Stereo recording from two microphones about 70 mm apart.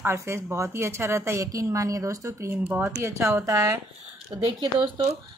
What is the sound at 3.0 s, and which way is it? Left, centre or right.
Speech, right.